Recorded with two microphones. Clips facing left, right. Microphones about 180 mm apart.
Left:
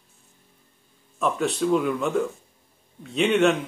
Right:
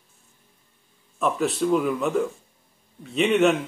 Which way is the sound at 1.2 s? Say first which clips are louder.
Right 1 dB; centre (ahead or behind).